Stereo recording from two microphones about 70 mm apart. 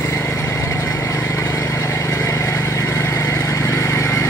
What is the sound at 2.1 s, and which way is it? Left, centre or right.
Vehicle, left.